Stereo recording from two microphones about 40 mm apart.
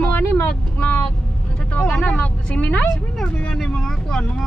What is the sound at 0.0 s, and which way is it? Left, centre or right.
Vehicle, left.